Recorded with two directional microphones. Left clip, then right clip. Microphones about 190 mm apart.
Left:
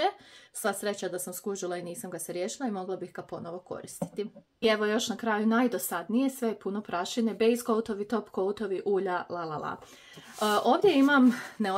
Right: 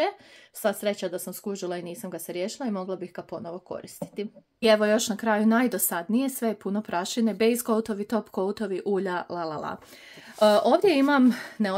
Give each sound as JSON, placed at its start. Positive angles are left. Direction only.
{"t": 0.6, "sound": "speech", "side_deg": -30}
{"t": 4.6, "sound": "speech", "side_deg": -50}